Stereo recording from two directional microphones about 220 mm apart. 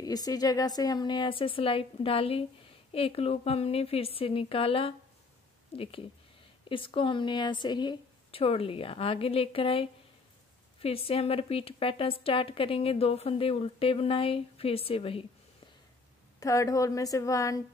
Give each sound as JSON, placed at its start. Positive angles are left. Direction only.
{"t": 0.0, "sound": "a woman's voice", "side_deg": 15}
{"t": 16.3, "sound": "a woman's voice", "side_deg": 15}